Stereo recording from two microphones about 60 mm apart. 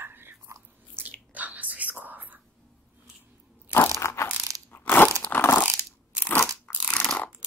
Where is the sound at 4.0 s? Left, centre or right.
Left.